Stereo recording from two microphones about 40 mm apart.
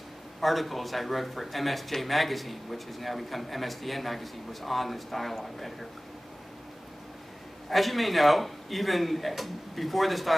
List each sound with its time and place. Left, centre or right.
0.4 s speech: centre
7.7 s speech: centre